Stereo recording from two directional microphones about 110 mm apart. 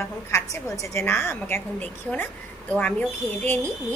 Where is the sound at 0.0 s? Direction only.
25° left (ahead or behind).